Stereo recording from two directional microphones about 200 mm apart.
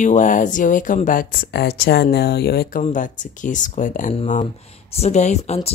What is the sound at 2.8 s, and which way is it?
Speech, 40° left (ahead or behind).